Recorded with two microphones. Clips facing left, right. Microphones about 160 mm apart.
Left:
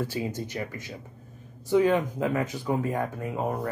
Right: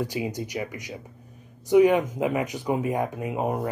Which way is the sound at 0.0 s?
15° right (ahead or behind).